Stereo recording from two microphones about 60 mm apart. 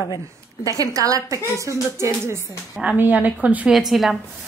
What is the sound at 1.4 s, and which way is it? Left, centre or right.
Speech, right.